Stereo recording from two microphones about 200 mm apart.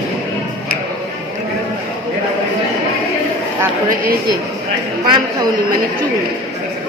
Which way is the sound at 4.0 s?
50° right (ahead or behind).